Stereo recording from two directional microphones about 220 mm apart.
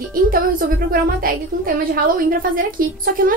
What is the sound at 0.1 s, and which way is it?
A woman's voice, 40° right (ahead or behind).